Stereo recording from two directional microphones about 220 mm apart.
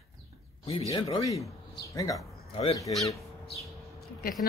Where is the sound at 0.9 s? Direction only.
15° left (ahead or behind).